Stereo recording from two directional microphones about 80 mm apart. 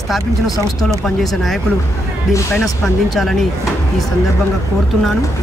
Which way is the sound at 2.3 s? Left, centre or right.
Left.